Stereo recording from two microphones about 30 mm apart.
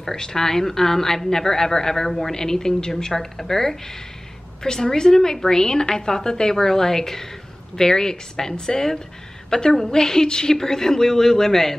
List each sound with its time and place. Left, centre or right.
0.0 s speech: centre